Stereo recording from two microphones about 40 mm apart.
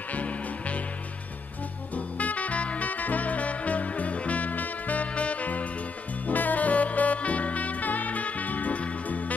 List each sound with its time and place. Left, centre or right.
0.1 s music: left
2.0 s music: left